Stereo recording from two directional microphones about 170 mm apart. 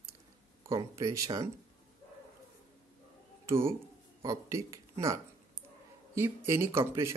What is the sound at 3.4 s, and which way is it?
Speech, 15° right (ahead or behind).